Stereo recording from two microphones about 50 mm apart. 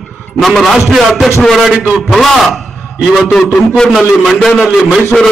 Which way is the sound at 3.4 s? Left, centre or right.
Centre.